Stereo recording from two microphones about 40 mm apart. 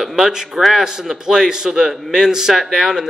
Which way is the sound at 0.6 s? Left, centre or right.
Centre.